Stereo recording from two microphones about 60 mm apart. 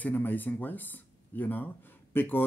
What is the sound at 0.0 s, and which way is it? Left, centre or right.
Speech, left.